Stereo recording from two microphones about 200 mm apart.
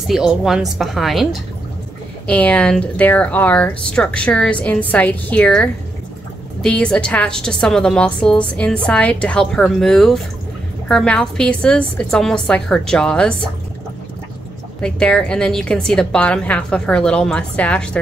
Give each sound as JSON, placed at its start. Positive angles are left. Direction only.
{"t": 0.3, "sound": "a woman's voice", "side_deg": 0}
{"t": 14.8, "sound": "a woman's voice", "side_deg": 5}